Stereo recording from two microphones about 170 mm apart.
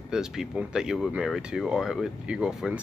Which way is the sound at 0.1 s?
5° right (ahead or behind).